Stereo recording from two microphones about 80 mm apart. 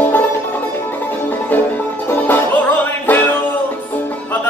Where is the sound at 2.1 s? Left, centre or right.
Left.